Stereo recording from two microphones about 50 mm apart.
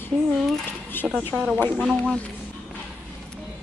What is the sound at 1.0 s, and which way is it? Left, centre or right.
Speech, left.